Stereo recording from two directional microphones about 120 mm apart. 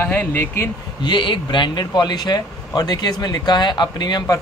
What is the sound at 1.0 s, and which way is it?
Speech, 40° left (ahead or behind).